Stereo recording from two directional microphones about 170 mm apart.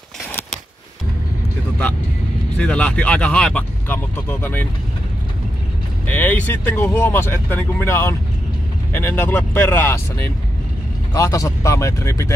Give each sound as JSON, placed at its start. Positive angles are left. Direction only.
{"t": 2.5, "sound": "speech", "side_deg": 5}
{"t": 6.0, "sound": "speech", "side_deg": 10}